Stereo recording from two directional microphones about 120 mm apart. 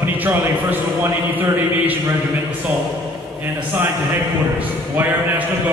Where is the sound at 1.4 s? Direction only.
20° right (ahead or behind).